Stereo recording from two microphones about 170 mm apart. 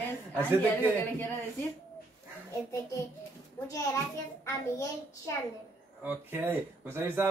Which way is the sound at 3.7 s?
20° left (ahead or behind).